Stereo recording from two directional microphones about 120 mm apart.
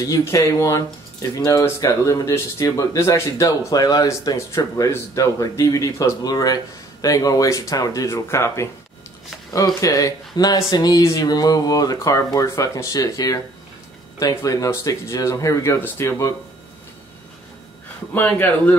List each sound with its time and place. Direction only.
0.0 s speech: 25° left (ahead or behind)
9.8 s speech: 30° left (ahead or behind)
18.1 s a man's voice: 15° left (ahead or behind)